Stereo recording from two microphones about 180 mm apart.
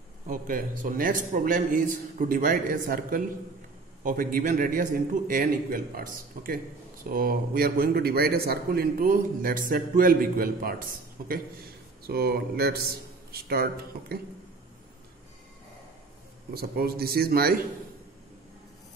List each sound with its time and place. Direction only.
0.3 s a man's voice: 45° right (ahead or behind)
16.5 s a man's voice: 60° right (ahead or behind)